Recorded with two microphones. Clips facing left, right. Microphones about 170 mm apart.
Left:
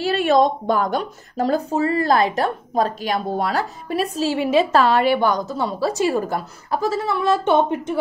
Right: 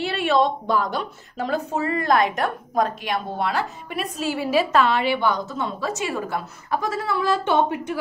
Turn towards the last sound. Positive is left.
turn(degrees=20)  # may be behind; listen again after turning